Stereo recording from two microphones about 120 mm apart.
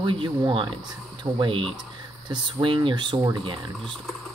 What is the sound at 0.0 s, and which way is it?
Speech, 45° right (ahead or behind).